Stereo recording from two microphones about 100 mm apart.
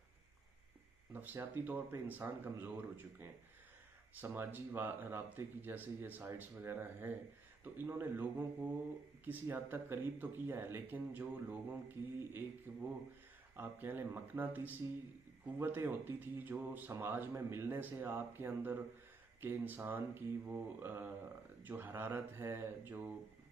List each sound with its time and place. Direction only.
1.1 s speech: 20° right (ahead or behind)